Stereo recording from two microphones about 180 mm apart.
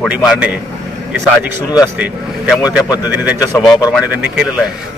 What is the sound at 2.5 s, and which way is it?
Speech, 5° right (ahead or behind).